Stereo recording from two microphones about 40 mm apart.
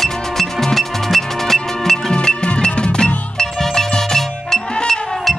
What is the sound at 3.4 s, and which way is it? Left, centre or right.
Music, centre.